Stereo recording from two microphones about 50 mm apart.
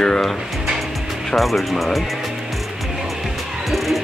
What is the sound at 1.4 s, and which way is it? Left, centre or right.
Speech, centre.